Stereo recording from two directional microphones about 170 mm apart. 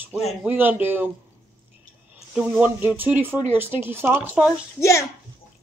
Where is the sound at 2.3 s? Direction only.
10° right (ahead or behind).